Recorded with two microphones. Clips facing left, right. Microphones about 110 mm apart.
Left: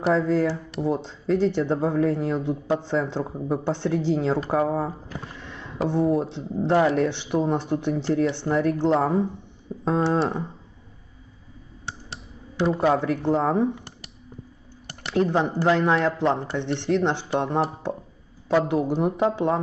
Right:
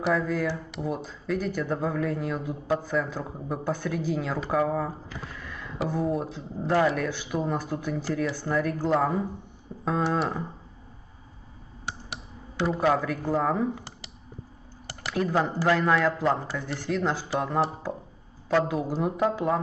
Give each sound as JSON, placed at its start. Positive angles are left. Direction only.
{"t": 0.1, "sound": "speech", "side_deg": 30}
{"t": 12.8, "sound": "speech", "side_deg": 25}
{"t": 15.1, "sound": "speech", "side_deg": 25}